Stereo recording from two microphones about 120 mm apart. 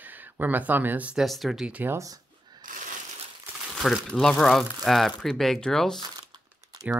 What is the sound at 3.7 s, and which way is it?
Speech, centre (ahead or behind).